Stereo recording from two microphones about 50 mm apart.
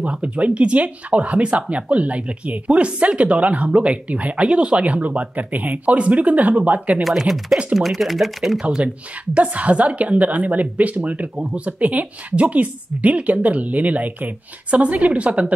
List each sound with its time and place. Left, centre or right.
0.0 s speech: right
7.0 s speech: centre
8.6 s speech: right